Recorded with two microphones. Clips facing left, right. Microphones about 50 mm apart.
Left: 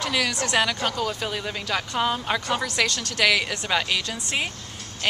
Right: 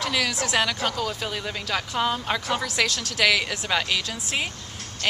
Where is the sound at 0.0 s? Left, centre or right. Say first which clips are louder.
Even; centre.